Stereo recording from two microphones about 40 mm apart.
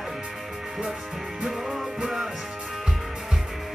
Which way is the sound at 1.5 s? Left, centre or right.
Centre.